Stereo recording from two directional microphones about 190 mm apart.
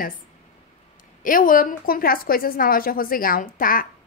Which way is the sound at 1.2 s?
45° left (ahead or behind).